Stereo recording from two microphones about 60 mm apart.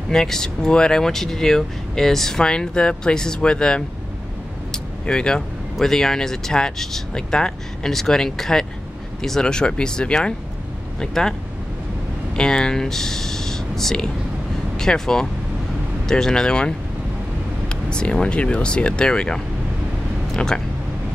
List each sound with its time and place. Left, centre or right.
0.1 s speech: centre
5.0 s speech: centre
12.4 s speech: centre